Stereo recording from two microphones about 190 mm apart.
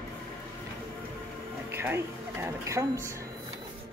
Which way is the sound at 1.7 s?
10° right (ahead or behind).